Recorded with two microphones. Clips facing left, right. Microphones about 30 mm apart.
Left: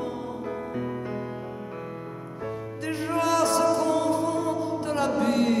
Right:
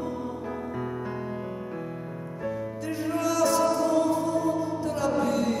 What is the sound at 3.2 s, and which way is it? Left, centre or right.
Music, left.